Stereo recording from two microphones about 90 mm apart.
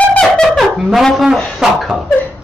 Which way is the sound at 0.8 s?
Centre (ahead or behind).